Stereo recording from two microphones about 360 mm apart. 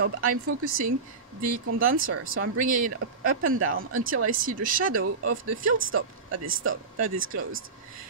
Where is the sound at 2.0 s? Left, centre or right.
Right.